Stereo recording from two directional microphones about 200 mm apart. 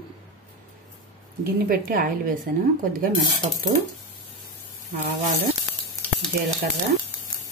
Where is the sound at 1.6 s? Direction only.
50° right (ahead or behind).